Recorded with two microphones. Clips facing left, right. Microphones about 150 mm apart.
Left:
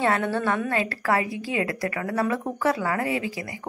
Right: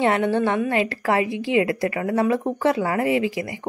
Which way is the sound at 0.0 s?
20° right (ahead or behind).